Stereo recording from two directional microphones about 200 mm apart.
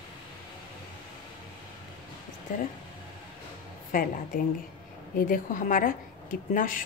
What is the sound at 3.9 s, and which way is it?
A woman's voice, 45° left (ahead or behind).